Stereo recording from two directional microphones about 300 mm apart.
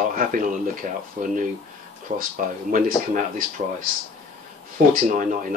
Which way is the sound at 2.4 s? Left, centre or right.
Right.